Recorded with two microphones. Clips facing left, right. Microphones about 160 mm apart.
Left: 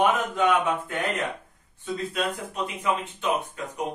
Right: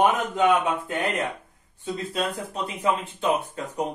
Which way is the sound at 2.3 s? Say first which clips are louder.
Even; 35° right (ahead or behind).